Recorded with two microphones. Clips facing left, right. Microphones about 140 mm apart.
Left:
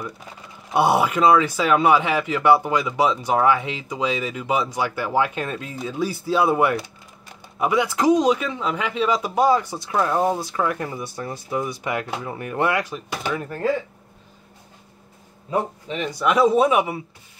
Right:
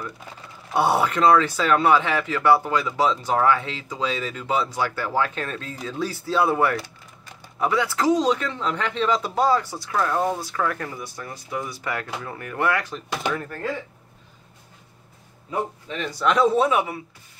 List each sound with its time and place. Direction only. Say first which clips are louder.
0.7 s speech: left 2 dB; 15° left (ahead or behind)
13.1 s speech: right 1 dB; 5° left (ahead or behind)
13.4 s speech: left 4 dB; 20° left (ahead or behind)
15.9 s speech: left 2 dB; 15° left (ahead or behind)